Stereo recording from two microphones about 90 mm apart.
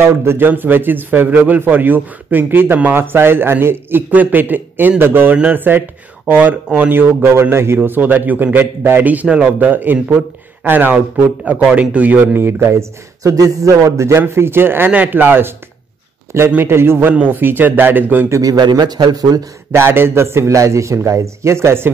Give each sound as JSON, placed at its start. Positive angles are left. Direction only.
{"t": 0.0, "sound": "a man's voice", "side_deg": -25}
{"t": 18.3, "sound": "speech", "side_deg": -40}
{"t": 19.7, "sound": "a man's voice", "side_deg": -25}